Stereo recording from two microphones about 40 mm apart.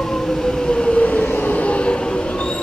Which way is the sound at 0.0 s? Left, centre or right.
Centre.